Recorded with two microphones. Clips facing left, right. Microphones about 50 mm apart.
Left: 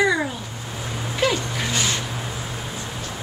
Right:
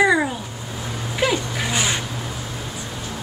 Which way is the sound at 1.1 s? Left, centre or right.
Centre.